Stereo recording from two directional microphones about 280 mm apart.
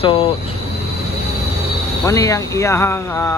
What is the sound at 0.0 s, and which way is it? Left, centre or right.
Train, left.